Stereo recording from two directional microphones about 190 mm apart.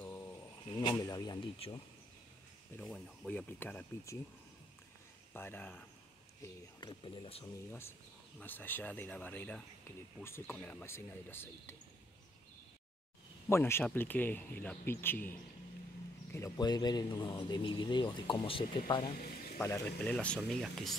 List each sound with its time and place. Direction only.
0.0 s speech: 15° left (ahead or behind)
2.8 s speech: 5° left (ahead or behind)
5.3 s speech: 10° left (ahead or behind)
6.4 s a man's voice: 20° left (ahead or behind)
8.4 s speech: 10° left (ahead or behind)
13.5 s a man's voice: 10° left (ahead or behind)
19.1 s speech: 50° left (ahead or behind)
19.6 s speech: 15° left (ahead or behind)